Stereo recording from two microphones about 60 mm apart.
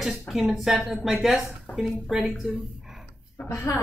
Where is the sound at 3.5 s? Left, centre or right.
Left.